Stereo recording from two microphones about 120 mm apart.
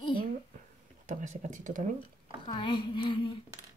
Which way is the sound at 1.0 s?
90° right.